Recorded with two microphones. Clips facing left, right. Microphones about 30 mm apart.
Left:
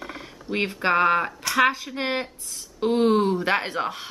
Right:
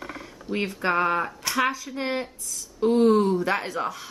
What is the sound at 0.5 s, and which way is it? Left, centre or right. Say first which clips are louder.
Speech: left 3 dB; left.